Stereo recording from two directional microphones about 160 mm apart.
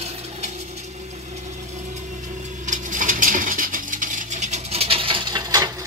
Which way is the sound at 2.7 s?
55° right (ahead or behind).